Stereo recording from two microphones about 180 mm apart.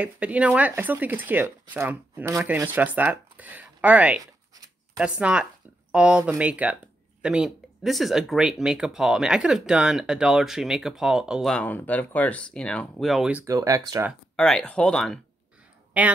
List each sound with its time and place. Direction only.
0.0 s speech: 10° right (ahead or behind)
13.6 s speech: 20° right (ahead or behind)
14.3 s speech: 5° left (ahead or behind)
16.0 s speech: 10° right (ahead or behind)